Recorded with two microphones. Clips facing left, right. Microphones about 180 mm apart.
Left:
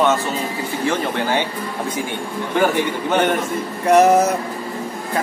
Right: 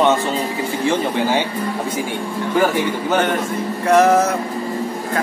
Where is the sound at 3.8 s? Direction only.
20° left (ahead or behind).